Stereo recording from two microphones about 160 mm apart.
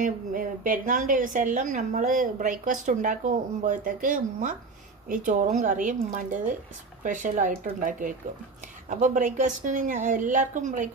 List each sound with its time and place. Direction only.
0.0 s a woman's voice: 60° right (ahead or behind)
7.0 s a woman's voice: 55° right (ahead or behind)